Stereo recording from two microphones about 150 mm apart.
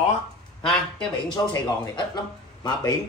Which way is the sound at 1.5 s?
30° left (ahead or behind).